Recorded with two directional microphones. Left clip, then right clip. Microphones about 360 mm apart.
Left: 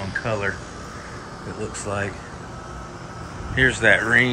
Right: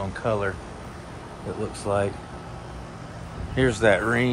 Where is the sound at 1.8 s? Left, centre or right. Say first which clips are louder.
Right 3 dB; centre.